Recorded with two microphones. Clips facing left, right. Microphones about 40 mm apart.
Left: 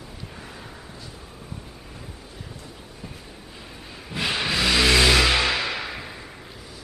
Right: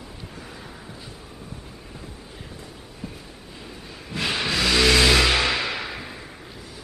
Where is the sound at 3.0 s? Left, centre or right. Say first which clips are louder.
Right 4 dB; centre.